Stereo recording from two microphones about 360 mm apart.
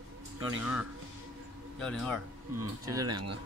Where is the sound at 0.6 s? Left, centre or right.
Centre.